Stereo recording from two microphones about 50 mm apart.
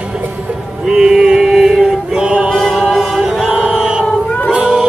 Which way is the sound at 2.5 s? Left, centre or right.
Centre.